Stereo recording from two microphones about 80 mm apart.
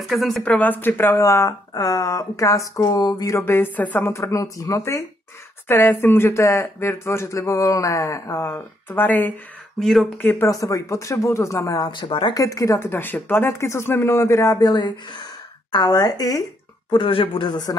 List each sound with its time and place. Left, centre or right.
0.1 s speech: centre
0.5 s speech: left
3.3 s speech: left
4.0 s speech: left
5.7 s speech: left
9.8 s speech: centre
10.1 s speech: left
10.5 s speech: left
11.9 s speech: left
12.4 s speech: left
14.6 s speech: left
15.7 s speech: left
16.9 s speech: left